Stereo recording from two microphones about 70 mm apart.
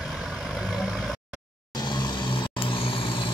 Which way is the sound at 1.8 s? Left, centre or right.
Left.